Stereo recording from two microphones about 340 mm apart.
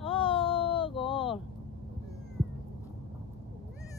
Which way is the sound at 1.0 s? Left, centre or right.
Centre.